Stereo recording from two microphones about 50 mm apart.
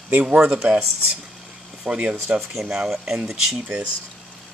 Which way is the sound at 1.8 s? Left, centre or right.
Right.